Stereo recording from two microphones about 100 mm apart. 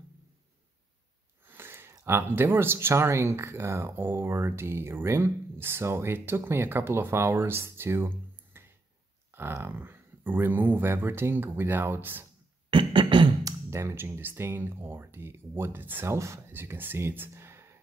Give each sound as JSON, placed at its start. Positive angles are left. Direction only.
{"t": 1.5, "sound": "speech", "side_deg": -25}
{"t": 8.5, "sound": "a sound", "side_deg": -25}
{"t": 9.3, "sound": "speech", "side_deg": -25}
{"t": 12.7, "sound": "beatboxing", "side_deg": -55}
{"t": 13.4, "sound": "speech", "side_deg": -30}